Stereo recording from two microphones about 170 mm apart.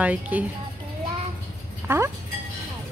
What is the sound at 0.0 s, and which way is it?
Speech, 10° right (ahead or behind).